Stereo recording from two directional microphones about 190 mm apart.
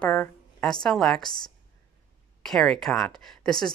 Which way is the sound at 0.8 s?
5° left (ahead or behind).